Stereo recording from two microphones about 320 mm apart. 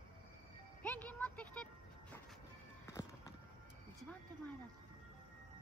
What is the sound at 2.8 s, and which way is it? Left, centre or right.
Music, centre.